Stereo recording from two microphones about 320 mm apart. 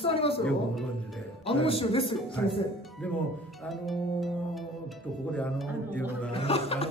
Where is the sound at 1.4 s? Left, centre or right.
Centre.